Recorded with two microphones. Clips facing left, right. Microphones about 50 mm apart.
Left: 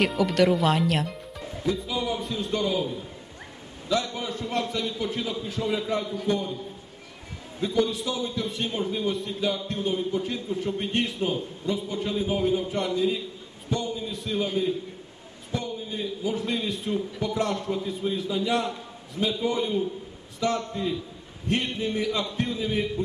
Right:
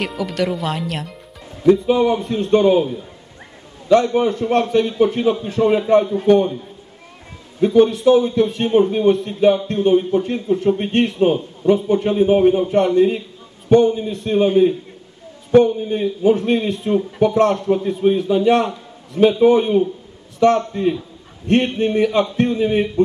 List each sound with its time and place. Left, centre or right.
0.0 s speech: centre
1.7 s a man's voice: right
3.9 s a man's voice: right
4.3 s a man's voice: right
4.7 s a man's voice: right
7.6 s a man's voice: right